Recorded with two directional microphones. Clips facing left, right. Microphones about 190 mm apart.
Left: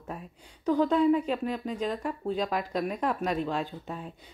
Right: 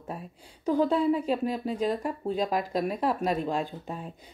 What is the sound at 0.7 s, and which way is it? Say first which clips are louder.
Speech: left 1 dB; 35° right (ahead or behind).